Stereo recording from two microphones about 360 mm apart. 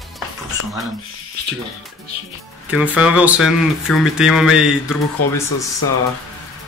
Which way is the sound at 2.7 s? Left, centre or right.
Centre.